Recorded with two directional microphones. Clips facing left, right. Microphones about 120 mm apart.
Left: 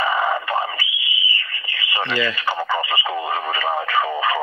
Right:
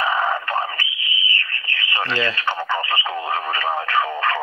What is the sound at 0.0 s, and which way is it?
Radio, 5° left (ahead or behind).